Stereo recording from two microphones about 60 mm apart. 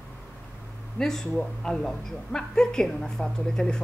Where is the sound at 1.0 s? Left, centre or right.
Centre.